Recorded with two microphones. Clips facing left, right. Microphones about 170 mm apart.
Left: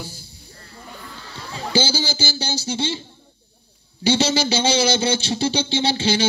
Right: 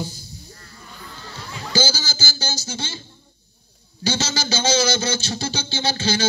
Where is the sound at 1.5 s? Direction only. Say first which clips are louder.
Left 2 dB; 30° left (ahead or behind).